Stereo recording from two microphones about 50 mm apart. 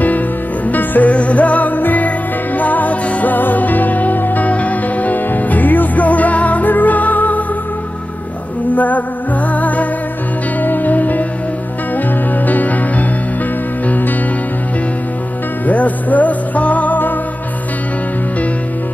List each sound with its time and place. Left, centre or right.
0.7 s music: left
8.7 s music: left
12.4 s music: left
15.6 s music: left